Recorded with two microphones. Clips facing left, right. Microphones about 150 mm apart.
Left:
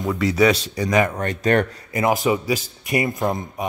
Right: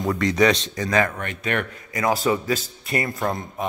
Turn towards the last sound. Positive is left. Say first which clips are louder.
# left 3 dB
turn(degrees=20)  # may be behind; listen again after turning